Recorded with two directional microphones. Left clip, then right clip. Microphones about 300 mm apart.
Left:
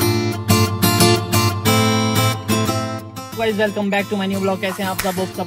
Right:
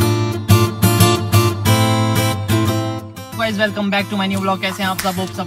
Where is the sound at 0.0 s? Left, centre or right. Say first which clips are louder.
Even; centre.